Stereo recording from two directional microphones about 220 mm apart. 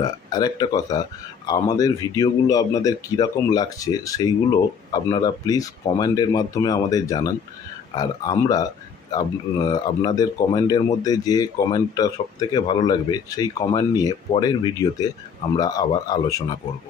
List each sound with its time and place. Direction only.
0.0 s a man's voice: 20° left (ahead or behind)